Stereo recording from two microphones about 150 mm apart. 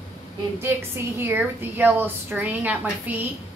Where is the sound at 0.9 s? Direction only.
15° right (ahead or behind).